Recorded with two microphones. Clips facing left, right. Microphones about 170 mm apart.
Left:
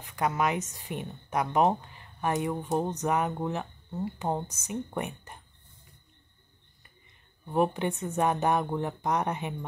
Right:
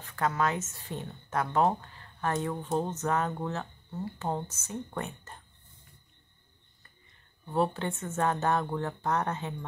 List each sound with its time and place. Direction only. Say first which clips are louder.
0.0 s a woman's voice: left 1 dB; 15° left (ahead or behind)
7.4 s a woman's voice: left 2 dB; 15° left (ahead or behind)